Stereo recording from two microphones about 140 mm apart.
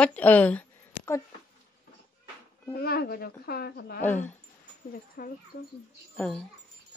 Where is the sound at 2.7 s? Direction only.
90° left.